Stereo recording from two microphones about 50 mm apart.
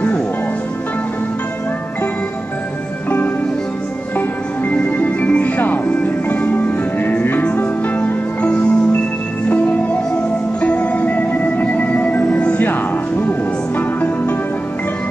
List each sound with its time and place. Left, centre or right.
4.6 s music: left
12.3 s music: left
13.7 s music: left